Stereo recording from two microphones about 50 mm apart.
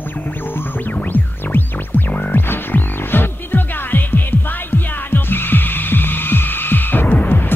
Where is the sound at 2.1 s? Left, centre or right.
Left.